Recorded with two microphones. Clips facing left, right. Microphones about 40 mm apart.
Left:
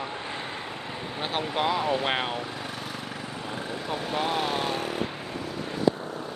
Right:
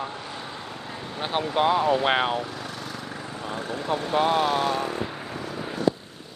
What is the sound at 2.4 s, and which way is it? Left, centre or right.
Lawn mower, centre.